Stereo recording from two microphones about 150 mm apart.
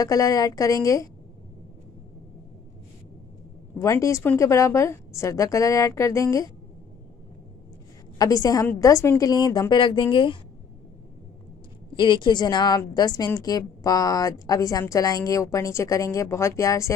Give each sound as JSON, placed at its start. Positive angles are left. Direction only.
{"t": 0.0, "sound": "a woman's voice", "side_deg": 25}
{"t": 3.8, "sound": "a woman's voice", "side_deg": 20}
{"t": 8.2, "sound": "a woman's voice", "side_deg": 25}
{"t": 12.0, "sound": "a woman's voice", "side_deg": 30}